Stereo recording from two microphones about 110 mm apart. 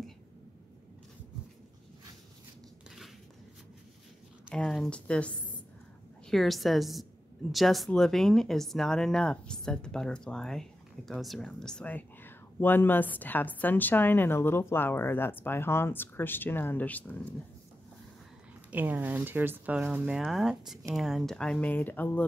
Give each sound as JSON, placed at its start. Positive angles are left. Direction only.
{"t": 4.6, "sound": "speech", "side_deg": 10}
{"t": 6.3, "sound": "a woman's voice", "side_deg": 0}
{"t": 18.7, "sound": "speech", "side_deg": -15}